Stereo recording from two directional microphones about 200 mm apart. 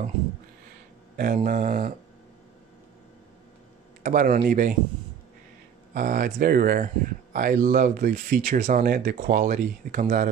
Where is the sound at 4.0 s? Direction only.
45° right (ahead or behind).